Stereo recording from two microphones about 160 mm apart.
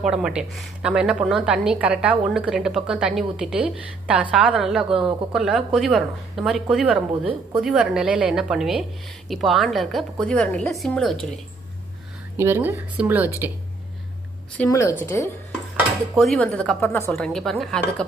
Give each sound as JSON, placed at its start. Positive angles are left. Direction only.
{"t": 0.0, "sound": "a woman's voice", "side_deg": -5}
{"t": 12.4, "sound": "speech", "side_deg": -15}
{"t": 14.7, "sound": "speech", "side_deg": 20}
{"t": 16.2, "sound": "a woman's voice", "side_deg": 5}